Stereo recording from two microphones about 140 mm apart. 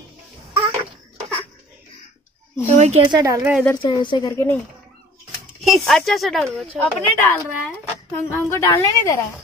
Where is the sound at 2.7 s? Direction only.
55° right (ahead or behind).